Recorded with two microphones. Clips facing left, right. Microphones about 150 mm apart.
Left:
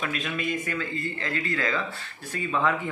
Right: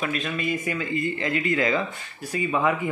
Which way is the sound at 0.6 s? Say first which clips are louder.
Right 4 dB; 15° right (ahead or behind).